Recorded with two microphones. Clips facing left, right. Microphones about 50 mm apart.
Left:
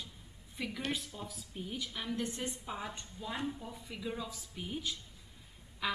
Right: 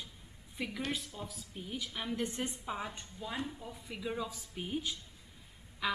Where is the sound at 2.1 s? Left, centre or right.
Right.